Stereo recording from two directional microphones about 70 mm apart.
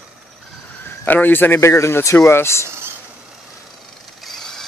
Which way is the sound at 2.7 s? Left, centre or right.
Right.